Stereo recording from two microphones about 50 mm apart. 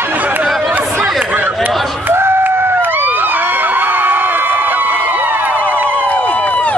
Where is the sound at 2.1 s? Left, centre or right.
Right.